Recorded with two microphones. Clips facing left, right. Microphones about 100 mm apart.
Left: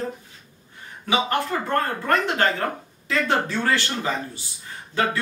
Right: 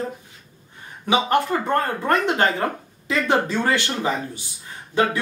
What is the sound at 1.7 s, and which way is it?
Speech, 20° right (ahead or behind).